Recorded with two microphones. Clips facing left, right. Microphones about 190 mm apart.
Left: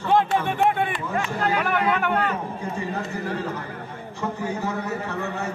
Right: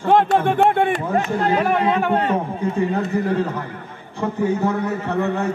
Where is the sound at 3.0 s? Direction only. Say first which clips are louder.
Right 8 dB; 55° right (ahead or behind).